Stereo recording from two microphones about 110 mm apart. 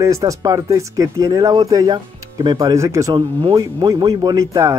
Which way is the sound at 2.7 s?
30° right (ahead or behind).